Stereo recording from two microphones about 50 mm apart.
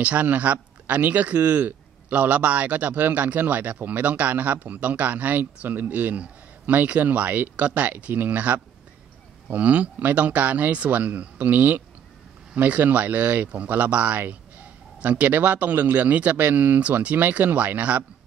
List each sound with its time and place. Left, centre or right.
0.0 s speech: right